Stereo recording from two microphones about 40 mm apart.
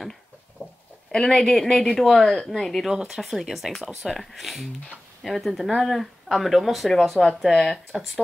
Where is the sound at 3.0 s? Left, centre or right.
Centre.